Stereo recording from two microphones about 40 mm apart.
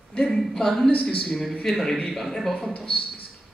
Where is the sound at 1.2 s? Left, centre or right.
Centre.